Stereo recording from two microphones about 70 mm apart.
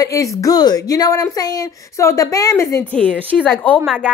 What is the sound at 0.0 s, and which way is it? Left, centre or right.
Speech, left.